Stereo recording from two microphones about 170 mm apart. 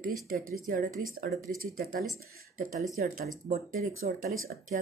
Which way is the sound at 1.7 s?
60° right (ahead or behind).